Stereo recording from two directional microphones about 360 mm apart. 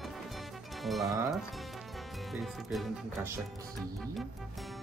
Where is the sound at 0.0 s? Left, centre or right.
Centre.